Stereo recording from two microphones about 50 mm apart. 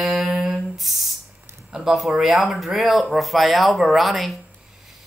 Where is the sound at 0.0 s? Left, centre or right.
Centre.